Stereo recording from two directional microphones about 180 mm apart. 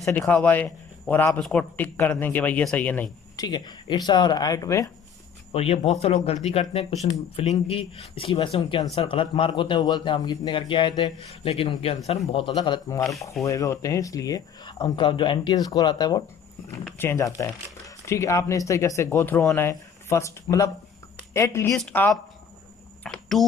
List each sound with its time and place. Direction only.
0.0 s speech: 10° left (ahead or behind)
3.3 s a man's voice: 25° left (ahead or behind)
5.5 s a man's voice: 35° left (ahead or behind); by 22.2 s 5° left (ahead or behind)
23.0 s a sound: centre (ahead or behind)